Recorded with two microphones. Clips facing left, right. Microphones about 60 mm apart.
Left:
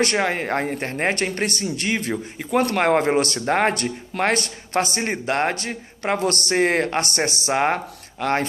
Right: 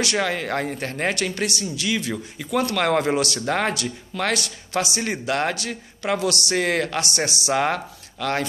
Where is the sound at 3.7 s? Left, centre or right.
Left.